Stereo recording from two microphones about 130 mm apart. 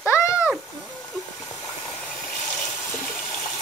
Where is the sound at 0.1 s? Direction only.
25° left (ahead or behind).